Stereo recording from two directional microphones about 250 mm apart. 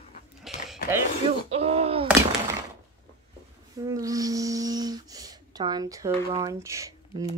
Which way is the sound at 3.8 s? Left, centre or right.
Centre.